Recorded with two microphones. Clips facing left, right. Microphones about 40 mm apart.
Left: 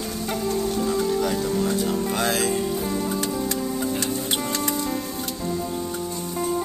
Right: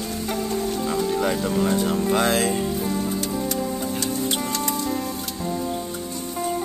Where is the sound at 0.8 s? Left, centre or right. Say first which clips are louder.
Right 1 dB; right.